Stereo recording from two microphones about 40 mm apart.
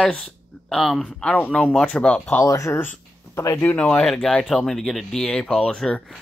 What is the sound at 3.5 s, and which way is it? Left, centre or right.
Speech, left.